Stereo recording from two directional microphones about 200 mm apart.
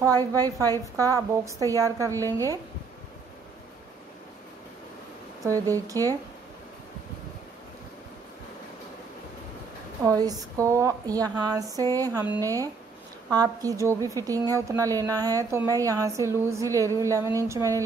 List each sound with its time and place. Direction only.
0.2 s a woman's voice: 15° right (ahead or behind)
5.4 s a woman's voice: 15° right (ahead or behind)
10.0 s a woman's voice: 15° right (ahead or behind)